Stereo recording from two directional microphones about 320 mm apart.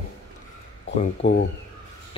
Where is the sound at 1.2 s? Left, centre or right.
Centre.